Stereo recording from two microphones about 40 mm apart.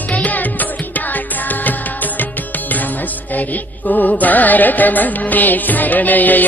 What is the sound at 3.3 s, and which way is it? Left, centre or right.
Music, left.